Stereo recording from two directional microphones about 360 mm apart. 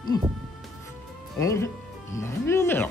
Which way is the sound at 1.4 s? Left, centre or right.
Centre.